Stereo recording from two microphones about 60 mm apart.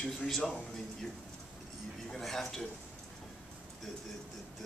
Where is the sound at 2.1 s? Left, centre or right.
Centre.